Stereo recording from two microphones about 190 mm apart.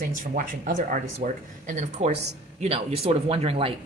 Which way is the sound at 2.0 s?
35° right (ahead or behind).